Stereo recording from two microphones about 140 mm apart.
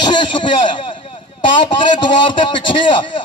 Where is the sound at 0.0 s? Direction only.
35° left (ahead or behind).